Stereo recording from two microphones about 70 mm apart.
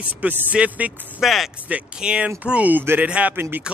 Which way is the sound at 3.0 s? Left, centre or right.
Centre.